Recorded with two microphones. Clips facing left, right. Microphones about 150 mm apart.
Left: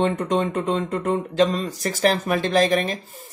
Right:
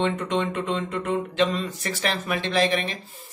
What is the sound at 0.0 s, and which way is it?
Speech, 40° left (ahead or behind).